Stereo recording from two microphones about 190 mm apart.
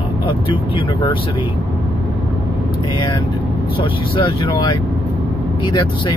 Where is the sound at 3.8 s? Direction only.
25° left (ahead or behind).